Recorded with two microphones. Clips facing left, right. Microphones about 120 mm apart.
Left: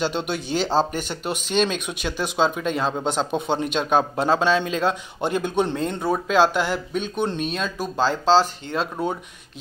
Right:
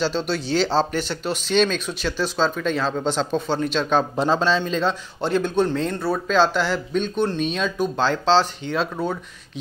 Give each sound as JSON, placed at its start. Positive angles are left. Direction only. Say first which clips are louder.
{"t": 0.0, "sound": "speech", "louder": "right 1 dB", "side_deg": 55}
{"t": 0.3, "sound": "a man's voice", "louder": "right 2 dB", "side_deg": 15}
{"t": 0.9, "sound": "speech", "louder": "right 2 dB", "side_deg": 50}
{"t": 1.5, "sound": "a man's voice", "louder": "right 3 dB", "side_deg": 10}
{"t": 3.8, "sound": "a man's voice", "louder": "left 1 dB", "side_deg": 5}